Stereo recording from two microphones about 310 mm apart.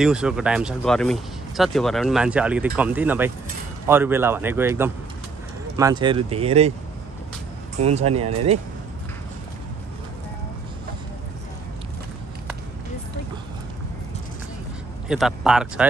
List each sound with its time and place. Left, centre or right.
0.0 s speech: centre
7.8 s speech: centre
15.0 s speech: centre